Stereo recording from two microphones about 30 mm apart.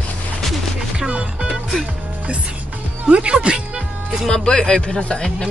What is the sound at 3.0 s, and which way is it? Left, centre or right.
Speech, right.